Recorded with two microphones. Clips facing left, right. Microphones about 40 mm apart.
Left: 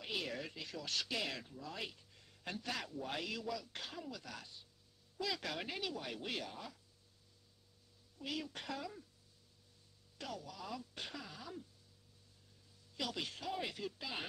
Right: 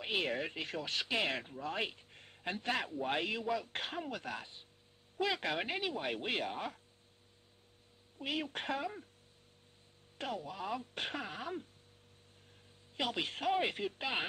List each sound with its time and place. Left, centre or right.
0.0 s speech: right
0.8 s speech: right
8.2 s speech: right
10.1 s speech: right
12.9 s speech: right